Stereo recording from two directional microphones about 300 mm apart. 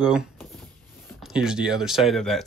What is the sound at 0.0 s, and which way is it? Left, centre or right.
Speech, centre.